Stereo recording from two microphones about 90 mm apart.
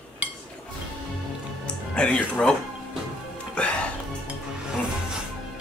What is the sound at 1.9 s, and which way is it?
Speech, 10° left (ahead or behind).